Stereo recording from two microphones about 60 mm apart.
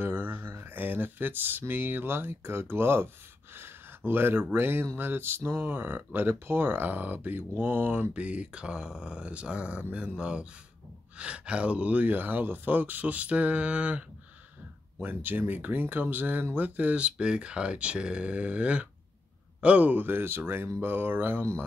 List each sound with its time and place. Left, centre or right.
0.0 s a sound: right
1.7 s speech: right
15.0 s speech: right